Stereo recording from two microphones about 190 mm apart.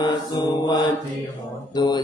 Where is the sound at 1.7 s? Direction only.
20° left (ahead or behind).